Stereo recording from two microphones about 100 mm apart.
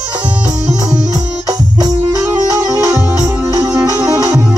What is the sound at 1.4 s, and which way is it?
Music, 35° right (ahead or behind).